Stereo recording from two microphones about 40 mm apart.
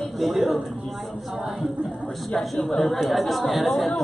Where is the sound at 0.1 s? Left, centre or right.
Centre.